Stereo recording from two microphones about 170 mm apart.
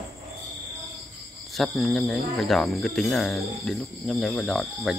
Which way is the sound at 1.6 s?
Centre (ahead or behind).